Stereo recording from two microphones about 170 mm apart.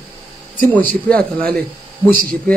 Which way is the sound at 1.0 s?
5° left (ahead or behind).